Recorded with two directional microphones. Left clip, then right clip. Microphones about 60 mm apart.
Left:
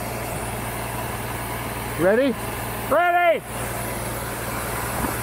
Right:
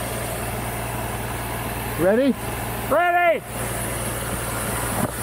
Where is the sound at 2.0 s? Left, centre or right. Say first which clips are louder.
Even; left.